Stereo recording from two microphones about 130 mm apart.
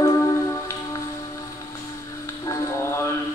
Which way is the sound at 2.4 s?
20° left (ahead or behind).